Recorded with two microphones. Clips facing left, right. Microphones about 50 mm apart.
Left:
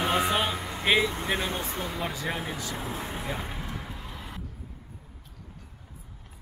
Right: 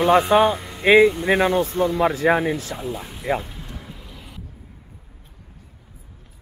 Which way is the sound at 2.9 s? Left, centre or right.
Left.